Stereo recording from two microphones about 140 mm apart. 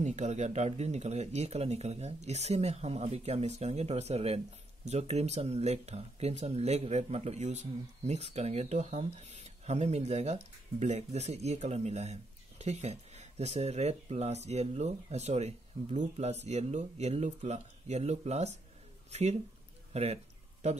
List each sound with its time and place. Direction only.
0.0 s speech: 55° right (ahead or behind)